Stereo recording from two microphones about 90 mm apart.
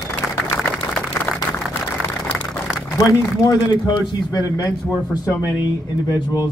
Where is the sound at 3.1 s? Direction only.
35° left (ahead or behind).